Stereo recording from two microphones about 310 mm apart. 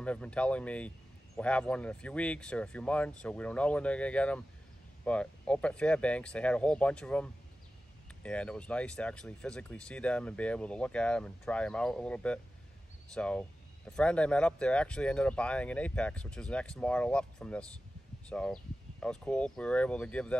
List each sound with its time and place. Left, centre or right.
0.0 s speech: centre